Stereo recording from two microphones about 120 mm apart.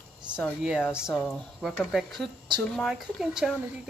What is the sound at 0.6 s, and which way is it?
Speech, 5° right (ahead or behind).